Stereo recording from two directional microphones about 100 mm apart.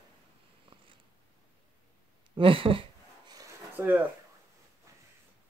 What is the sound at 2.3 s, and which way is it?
Speech, 60° right (ahead or behind).